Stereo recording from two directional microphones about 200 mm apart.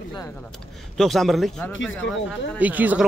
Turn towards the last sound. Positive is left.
turn(degrees=-10)  # may be behind; listen again after turning